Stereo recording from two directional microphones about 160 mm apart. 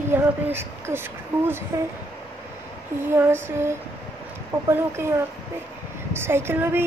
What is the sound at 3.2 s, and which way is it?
A woman's voice, 15° right (ahead or behind).